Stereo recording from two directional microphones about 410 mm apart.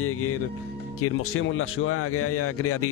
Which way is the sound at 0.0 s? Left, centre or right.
Left.